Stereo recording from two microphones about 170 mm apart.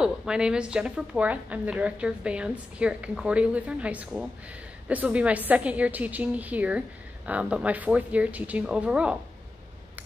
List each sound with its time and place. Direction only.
0.0 s a woman's voice: 5° right (ahead or behind)